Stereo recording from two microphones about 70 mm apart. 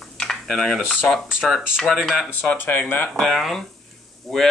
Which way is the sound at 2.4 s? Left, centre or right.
Left.